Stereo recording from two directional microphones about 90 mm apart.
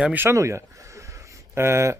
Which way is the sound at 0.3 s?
30° right (ahead or behind).